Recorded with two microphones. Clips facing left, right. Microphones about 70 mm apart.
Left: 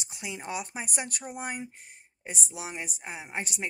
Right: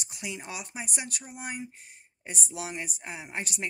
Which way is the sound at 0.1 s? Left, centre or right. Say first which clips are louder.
Left 3 dB; left.